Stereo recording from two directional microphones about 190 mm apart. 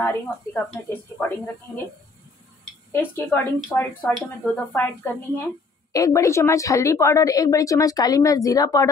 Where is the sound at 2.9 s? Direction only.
10° left (ahead or behind).